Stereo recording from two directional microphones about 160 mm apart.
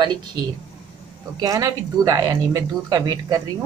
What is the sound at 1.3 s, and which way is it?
Speech, 25° right (ahead or behind).